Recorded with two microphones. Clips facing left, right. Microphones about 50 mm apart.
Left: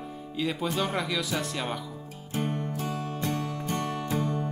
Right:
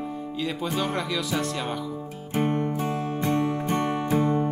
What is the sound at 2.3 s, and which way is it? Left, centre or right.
Music, right.